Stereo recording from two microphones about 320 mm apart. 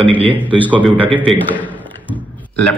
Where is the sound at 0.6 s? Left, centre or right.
Centre.